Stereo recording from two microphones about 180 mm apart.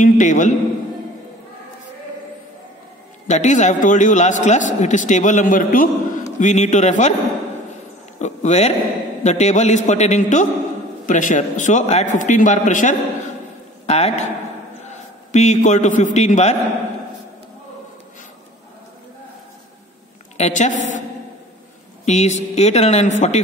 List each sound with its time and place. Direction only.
0.0 s a man's voice: 45° left (ahead or behind)
3.3 s a man's voice: 40° left (ahead or behind)
8.2 s a man's voice: 40° left (ahead or behind)
20.3 s speech: 40° left (ahead or behind)
22.0 s speech: 40° left (ahead or behind)